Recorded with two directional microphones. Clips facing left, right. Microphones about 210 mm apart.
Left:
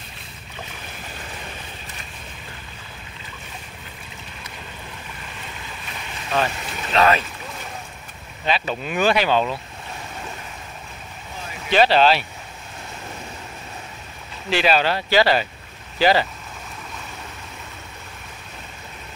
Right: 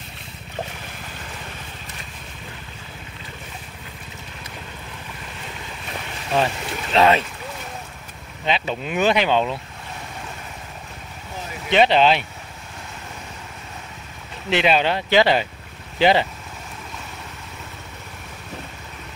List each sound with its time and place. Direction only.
6.3 s speech: 25° right (ahead or behind)
8.5 s speech: 20° right (ahead or behind)
11.7 s speech: 20° right (ahead or behind)
14.5 s speech: 20° right (ahead or behind)